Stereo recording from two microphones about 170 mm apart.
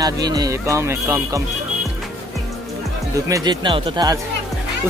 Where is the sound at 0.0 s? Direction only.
20° right (ahead or behind).